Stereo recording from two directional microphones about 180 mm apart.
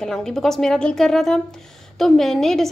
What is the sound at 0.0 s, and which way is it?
A woman's voice, 5° left (ahead or behind).